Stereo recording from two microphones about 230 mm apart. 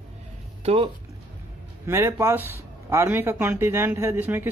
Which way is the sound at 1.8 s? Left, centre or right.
Centre.